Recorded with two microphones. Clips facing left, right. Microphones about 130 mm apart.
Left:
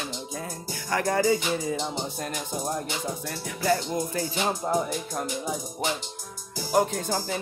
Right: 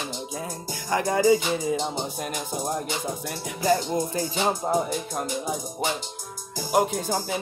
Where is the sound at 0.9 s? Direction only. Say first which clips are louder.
Right 3 dB; 20° right (ahead or behind).